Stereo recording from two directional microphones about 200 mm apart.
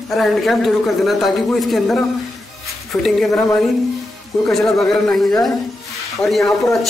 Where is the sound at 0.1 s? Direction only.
Centre (ahead or behind).